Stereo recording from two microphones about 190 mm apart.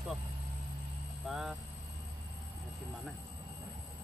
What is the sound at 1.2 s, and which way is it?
Vehicle, centre (ahead or behind).